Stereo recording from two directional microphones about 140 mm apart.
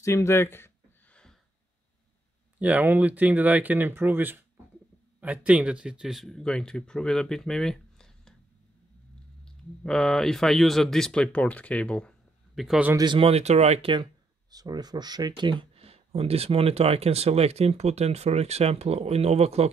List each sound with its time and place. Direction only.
0.0 s speech: 20° left (ahead or behind)
2.6 s speech: 10° right (ahead or behind); by 8.4 s 5° left (ahead or behind)
9.4 s speech: 5° left (ahead or behind)
12.9 s speech: 35° right (ahead or behind)
13.3 s speech: 50° right (ahead or behind)
14.5 s speech: 30° right (ahead or behind); by 19.7 s 50° right (ahead or behind)